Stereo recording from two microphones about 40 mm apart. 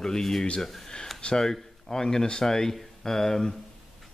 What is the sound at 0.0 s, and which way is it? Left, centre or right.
Speech, centre.